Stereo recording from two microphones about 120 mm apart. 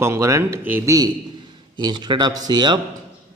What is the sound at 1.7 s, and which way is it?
Speech, 40° right (ahead or behind).